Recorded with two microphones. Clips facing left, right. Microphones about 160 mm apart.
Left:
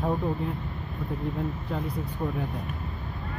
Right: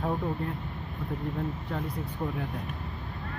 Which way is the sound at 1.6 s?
10° left (ahead or behind).